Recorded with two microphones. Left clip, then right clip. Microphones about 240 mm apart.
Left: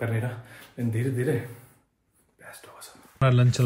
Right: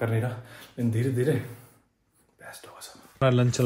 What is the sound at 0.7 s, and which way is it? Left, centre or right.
Speech, centre.